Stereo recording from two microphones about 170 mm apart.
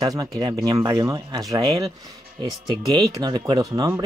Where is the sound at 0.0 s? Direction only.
20° right (ahead or behind).